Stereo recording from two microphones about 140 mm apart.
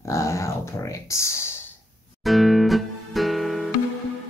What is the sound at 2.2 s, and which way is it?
Music, centre (ahead or behind).